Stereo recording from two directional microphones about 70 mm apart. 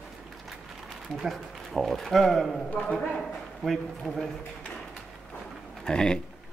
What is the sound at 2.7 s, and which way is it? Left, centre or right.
Speech, centre.